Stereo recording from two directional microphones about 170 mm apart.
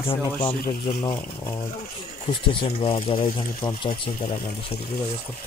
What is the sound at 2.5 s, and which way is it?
Speech, 30° left (ahead or behind).